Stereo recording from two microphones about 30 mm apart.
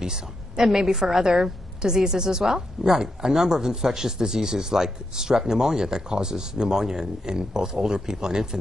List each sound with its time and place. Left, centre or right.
0.0 s a woman's voice: centre